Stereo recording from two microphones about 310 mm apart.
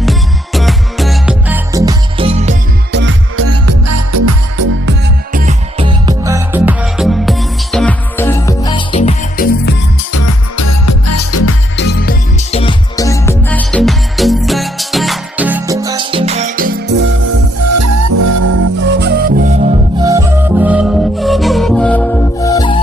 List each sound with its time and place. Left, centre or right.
0.0 s music: centre
2.9 s music: right
4.8 s music: right; by 9.5 s centre
10.1 s music: left
11.7 s music: left; by 16.9 s right
17.6 s music: right
18.9 s music: right
20.0 s music: centre